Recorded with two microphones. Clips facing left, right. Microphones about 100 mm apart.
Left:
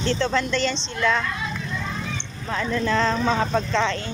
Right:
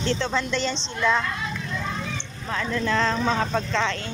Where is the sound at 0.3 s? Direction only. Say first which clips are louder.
Left 2 dB; 10° right (ahead or behind).